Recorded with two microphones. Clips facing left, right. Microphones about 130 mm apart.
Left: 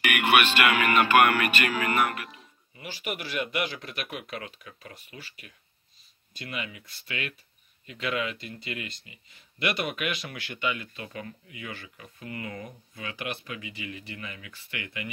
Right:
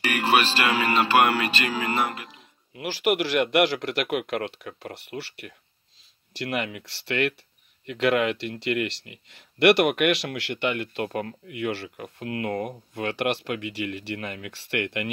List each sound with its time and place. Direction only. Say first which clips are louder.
0.0 s speech: right 1 dB; 35° right (ahead or behind)
2.7 s speech: right 11 dB; 80° right